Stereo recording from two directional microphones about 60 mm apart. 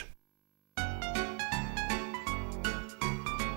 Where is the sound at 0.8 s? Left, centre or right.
Right.